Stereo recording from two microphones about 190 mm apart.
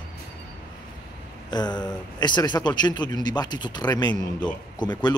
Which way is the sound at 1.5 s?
20° left (ahead or behind).